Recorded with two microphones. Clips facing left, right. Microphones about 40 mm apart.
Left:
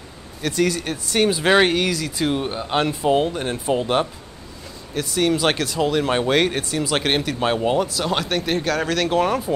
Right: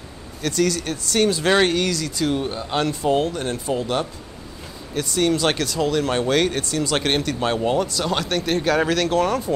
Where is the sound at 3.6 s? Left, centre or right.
Left.